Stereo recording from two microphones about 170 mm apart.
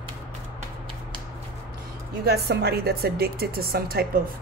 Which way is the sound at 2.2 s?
70° right (ahead or behind).